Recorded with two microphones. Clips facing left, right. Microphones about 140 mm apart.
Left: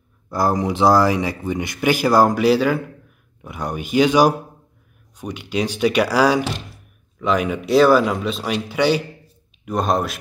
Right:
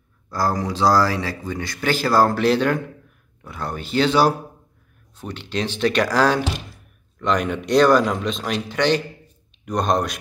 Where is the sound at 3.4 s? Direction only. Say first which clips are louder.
Left 3 dB; 15° left (ahead or behind).